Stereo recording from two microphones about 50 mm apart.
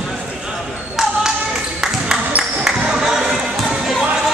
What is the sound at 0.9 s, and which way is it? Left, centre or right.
Music, centre.